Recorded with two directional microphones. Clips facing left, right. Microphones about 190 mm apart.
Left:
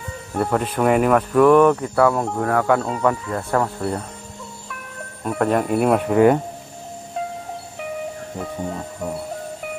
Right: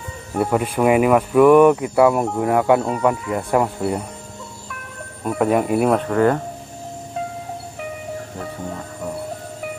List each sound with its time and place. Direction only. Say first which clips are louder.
0.3 s speech: right 2 dB; 5° right (ahead or behind)
5.2 s speech: right 2 dB; 5° right (ahead or behind)
5.9 s speech: left 2 dB; 15° left (ahead or behind)